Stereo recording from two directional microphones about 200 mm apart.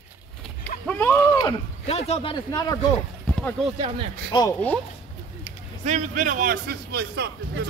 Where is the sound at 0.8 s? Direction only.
10° left (ahead or behind).